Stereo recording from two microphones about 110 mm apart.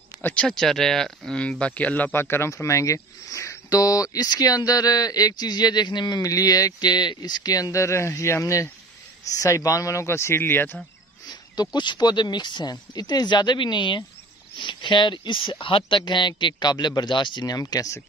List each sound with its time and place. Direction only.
0.2 s speech: 10° left (ahead or behind)
11.2 s speech: 40° left (ahead or behind)